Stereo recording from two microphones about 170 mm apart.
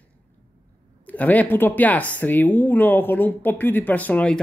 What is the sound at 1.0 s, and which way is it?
Speech, 10° left (ahead or behind).